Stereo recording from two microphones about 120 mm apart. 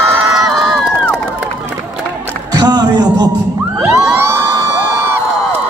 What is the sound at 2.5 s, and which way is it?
Music, 35° right (ahead or behind).